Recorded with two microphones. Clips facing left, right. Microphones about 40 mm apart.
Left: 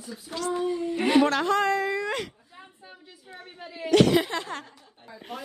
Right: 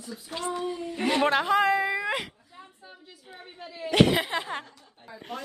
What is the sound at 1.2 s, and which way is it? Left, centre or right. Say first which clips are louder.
Speech: right 1 dB; centre.